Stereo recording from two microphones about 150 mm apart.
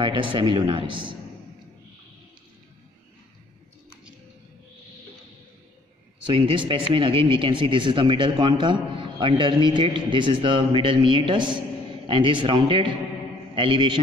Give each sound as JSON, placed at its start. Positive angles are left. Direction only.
{"t": 0.0, "sound": "speech", "side_deg": -35}
{"t": 6.3, "sound": "speech", "side_deg": -35}